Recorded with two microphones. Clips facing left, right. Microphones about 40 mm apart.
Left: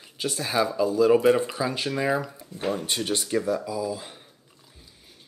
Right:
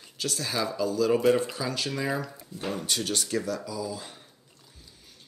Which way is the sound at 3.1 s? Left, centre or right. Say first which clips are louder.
Left 7 dB; centre.